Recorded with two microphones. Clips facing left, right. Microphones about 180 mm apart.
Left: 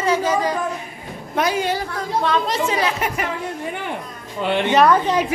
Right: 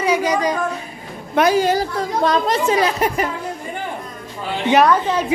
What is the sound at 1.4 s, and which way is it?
A woman's voice, 45° right (ahead or behind).